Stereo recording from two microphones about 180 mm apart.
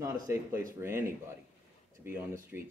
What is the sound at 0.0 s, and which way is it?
Speech, 15° right (ahead or behind).